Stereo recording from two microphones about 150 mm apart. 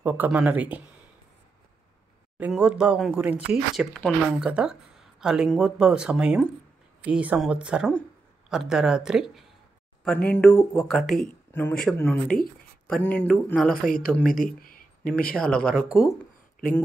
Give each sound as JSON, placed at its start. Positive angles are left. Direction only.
{"t": 0.0, "sound": "speech", "side_deg": -10}
{"t": 2.3, "sound": "speech", "side_deg": -10}
{"t": 10.0, "sound": "speech", "side_deg": 10}
{"t": 13.8, "sound": "speech", "side_deg": 65}
{"t": 15.3, "sound": "speech", "side_deg": 5}